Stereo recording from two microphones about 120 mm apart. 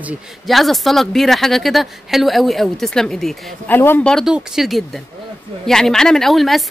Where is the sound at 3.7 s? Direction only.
15° left (ahead or behind).